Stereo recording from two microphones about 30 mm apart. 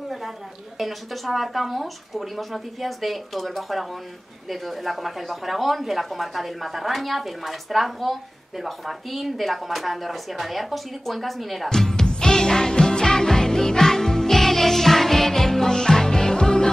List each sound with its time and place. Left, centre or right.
0.7 s a woman's voice: centre
11.7 s speech: centre
12.1 s music: centre